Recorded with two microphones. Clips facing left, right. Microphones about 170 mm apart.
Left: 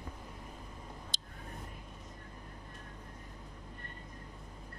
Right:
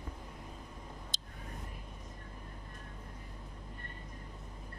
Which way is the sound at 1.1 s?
70° left (ahead or behind).